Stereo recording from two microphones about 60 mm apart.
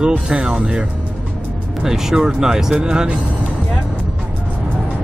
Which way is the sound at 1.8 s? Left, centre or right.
Centre.